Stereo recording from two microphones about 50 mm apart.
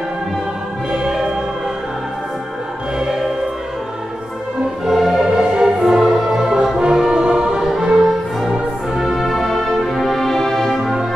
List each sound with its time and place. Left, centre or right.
4.8 s music: centre
6.8 s brass instrument: centre
8.0 s music: centre
9.8 s brass instrument: centre